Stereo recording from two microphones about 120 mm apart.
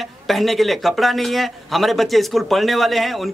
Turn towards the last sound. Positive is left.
turn(degrees=0)  # may be behind; listen again after turning